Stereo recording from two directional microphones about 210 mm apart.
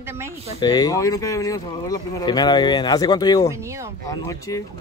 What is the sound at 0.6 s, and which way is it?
Speech, 20° left (ahead or behind).